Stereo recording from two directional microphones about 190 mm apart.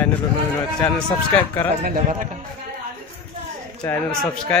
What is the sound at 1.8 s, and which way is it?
Speech, 45° right (ahead or behind).